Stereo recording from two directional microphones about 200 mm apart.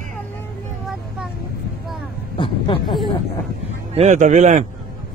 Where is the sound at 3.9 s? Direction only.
35° right (ahead or behind).